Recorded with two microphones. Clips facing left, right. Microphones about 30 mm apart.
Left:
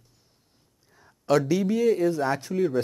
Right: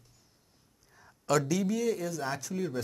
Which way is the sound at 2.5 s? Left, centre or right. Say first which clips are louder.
Left 9 dB; centre.